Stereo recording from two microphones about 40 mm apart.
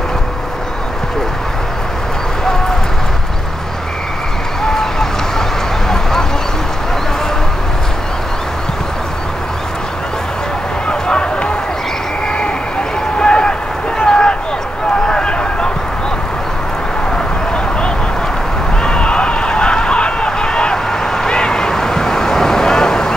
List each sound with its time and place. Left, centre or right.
4.6 s run: centre
10.9 s run: left
13.2 s a sound: left
18.8 s run: left